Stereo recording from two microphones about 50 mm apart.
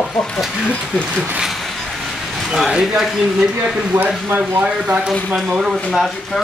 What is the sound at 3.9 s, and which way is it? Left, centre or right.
Speech, right.